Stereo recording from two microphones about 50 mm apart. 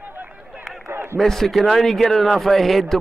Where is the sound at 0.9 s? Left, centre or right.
Right.